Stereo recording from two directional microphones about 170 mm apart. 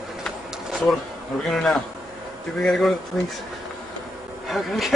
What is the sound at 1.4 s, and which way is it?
A man's voice, centre (ahead or behind).